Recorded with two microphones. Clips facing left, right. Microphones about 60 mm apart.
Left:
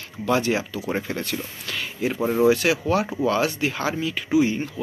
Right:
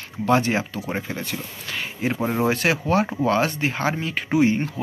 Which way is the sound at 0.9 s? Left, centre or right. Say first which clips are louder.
Left 3 dB; centre.